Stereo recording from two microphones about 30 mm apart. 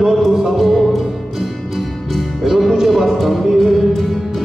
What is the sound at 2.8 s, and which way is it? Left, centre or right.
Music, centre.